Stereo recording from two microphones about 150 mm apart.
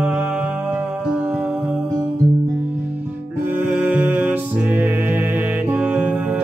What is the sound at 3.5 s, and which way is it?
Music, 15° right (ahead or behind).